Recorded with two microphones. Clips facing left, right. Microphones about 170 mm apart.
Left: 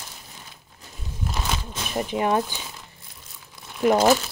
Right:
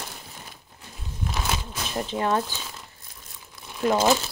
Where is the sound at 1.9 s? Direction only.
15° left (ahead or behind).